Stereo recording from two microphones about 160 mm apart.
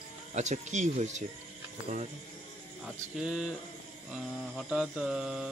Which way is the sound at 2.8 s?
5° right (ahead or behind).